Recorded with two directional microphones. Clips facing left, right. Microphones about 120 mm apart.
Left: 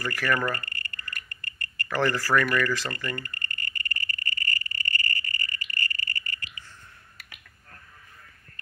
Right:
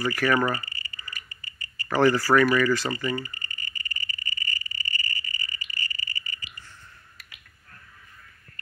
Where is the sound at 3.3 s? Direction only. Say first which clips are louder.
Left 3 dB; 60° left (ahead or behind).